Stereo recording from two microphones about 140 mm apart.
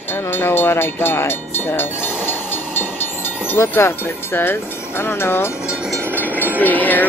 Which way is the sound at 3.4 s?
15° left (ahead or behind).